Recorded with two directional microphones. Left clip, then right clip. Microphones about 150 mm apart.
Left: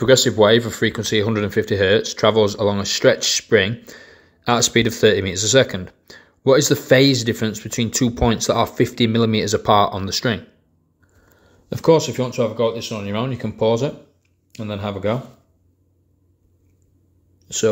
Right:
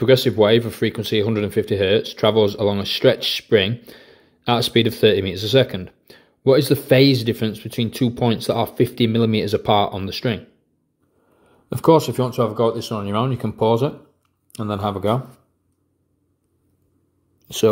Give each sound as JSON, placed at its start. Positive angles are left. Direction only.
{"t": 0.0, "sound": "speech", "side_deg": -15}
{"t": 11.7, "sound": "speech", "side_deg": -25}
{"t": 13.1, "sound": "speech", "side_deg": -30}
{"t": 14.5, "sound": "speech", "side_deg": -45}
{"t": 17.5, "sound": "speech", "side_deg": -30}